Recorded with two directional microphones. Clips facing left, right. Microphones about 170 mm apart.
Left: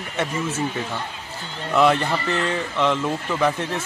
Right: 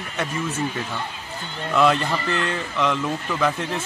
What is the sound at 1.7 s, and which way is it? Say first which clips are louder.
Speech: left 1 dB; 15° left (ahead or behind).